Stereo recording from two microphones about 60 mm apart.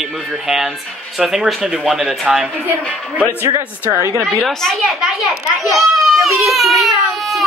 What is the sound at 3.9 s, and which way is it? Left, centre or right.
Speech, right.